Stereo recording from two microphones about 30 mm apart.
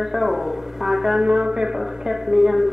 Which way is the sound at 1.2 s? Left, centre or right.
Right.